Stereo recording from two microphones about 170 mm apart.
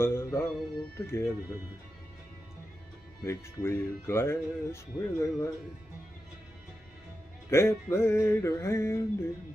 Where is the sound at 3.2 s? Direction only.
15° left (ahead or behind).